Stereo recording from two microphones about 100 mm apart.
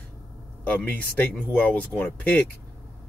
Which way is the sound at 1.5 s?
15° left (ahead or behind).